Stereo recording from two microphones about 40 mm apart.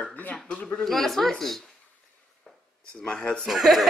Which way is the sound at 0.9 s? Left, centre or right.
Centre.